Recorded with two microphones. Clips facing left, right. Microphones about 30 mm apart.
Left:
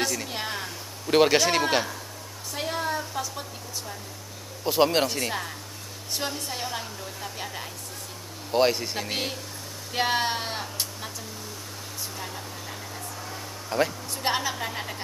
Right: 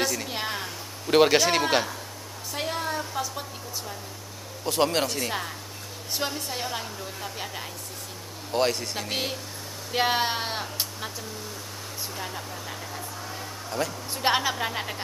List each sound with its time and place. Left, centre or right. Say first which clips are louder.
0.0 s a sound: right 1 dB; centre
4.6 s a man's voice: left 2 dB; centre
6.1 s a woman's voice: right 1 dB; centre
8.5 s a man's voice: left 3 dB; centre
12.2 s vehicle: right 2 dB; centre
13.7 s speech: left 4 dB; centre
14.1 s speech: right 7 dB; centre